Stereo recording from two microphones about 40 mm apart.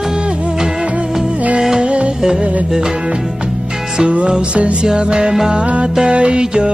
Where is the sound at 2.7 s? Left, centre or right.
Centre.